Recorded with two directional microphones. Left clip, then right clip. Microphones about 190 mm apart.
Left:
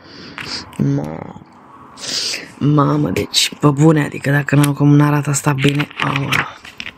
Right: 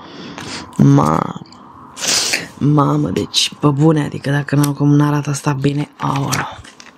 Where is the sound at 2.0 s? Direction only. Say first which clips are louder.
Right 5 dB; 40° right (ahead or behind).